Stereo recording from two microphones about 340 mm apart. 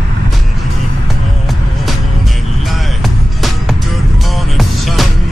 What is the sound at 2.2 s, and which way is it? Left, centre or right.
Music, centre.